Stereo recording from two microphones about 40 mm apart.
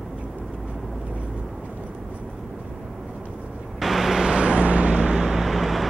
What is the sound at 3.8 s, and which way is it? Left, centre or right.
Vehicle, centre.